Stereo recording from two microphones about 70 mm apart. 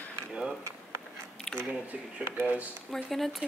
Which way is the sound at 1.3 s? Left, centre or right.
Centre.